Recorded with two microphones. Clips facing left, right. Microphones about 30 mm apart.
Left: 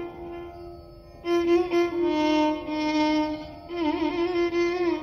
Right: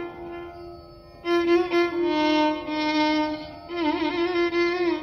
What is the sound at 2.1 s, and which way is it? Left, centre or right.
Music, right.